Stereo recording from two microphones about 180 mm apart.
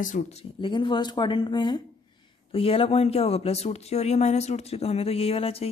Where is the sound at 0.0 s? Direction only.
40° left (ahead or behind).